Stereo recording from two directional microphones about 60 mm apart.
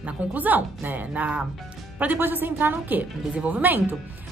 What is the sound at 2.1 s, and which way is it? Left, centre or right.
A woman's voice, right.